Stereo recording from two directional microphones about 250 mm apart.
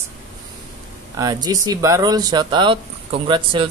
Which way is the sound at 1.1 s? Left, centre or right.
Centre.